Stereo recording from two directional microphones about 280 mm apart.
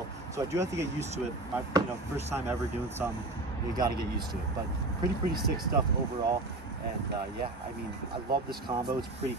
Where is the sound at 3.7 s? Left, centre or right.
Centre.